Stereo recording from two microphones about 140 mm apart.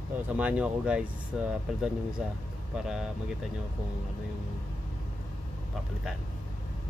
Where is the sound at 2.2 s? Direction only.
5° right (ahead or behind).